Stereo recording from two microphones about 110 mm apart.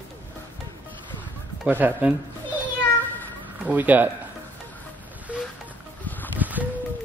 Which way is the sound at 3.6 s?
15° right (ahead or behind).